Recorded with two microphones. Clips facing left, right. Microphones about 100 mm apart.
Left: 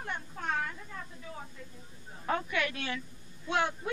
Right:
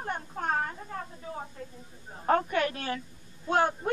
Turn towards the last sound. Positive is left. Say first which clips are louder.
# right 5 dB
turn(degrees=-40)  # may be behind; listen again after turning